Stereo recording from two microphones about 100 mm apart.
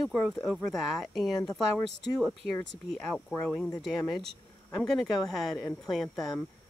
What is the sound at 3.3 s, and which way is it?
Speech, 10° left (ahead or behind).